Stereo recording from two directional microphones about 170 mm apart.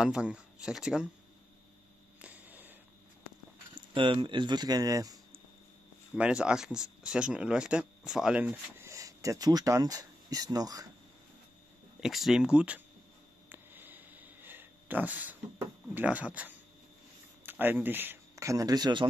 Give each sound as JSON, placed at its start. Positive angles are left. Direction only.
{"t": 0.0, "sound": "speech", "side_deg": -5}
{"t": 2.2, "sound": "a sound", "side_deg": -10}
{"t": 3.7, "sound": "speech", "side_deg": -30}
{"t": 6.1, "sound": "speech", "side_deg": -5}
{"t": 12.0, "sound": "speech", "side_deg": 0}
{"t": 13.5, "sound": "a sound", "side_deg": -10}
{"t": 17.5, "sound": "speech", "side_deg": -10}